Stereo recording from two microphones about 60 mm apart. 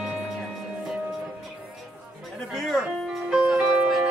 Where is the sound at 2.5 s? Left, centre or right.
Centre.